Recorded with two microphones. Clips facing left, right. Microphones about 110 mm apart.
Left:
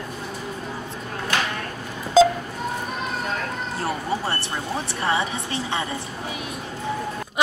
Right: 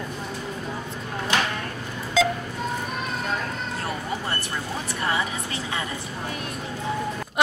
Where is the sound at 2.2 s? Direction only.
35° left (ahead or behind).